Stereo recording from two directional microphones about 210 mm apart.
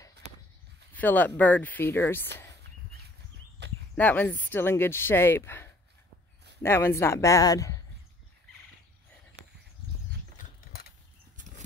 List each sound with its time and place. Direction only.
0.9 s speech: 10° left (ahead or behind)
3.9 s speech: 5° left (ahead or behind)
11.3 s a sound: 35° right (ahead or behind)